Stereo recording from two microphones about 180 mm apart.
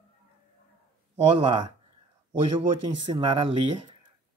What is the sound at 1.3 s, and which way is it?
Speech, 25° right (ahead or behind).